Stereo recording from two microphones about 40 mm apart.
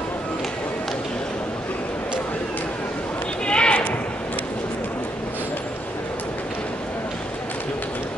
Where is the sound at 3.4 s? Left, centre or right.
Left.